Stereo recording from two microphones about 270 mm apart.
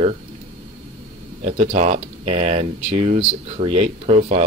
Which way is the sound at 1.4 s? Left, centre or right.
Right.